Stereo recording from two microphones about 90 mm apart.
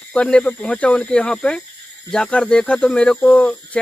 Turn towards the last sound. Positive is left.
turn(degrees=15)  # may be behind; listen again after turning